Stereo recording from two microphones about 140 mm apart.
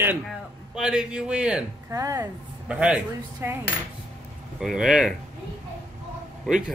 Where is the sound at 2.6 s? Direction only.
10° right (ahead or behind).